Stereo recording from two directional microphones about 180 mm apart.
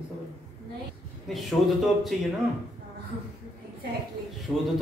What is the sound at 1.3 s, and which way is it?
Speech, centre (ahead or behind).